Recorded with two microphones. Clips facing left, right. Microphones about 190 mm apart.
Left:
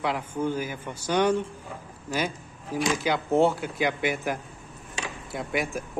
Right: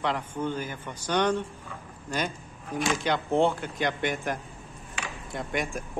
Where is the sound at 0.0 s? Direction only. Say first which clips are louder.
Left 2 dB; 10° left (ahead or behind).